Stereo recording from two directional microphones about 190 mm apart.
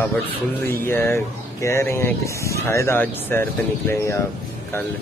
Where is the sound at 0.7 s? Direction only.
10° left (ahead or behind).